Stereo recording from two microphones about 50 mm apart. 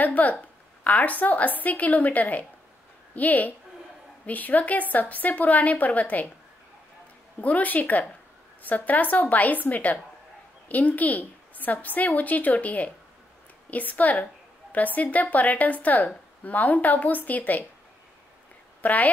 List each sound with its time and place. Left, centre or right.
0.0 s a woman's voice: left
7.3 s a woman's voice: left
18.8 s a woman's voice: left